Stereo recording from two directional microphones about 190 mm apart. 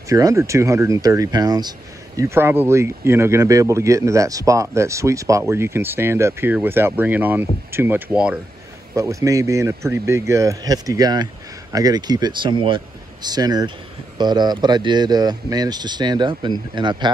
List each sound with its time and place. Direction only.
0.1 s speech: 15° right (ahead or behind)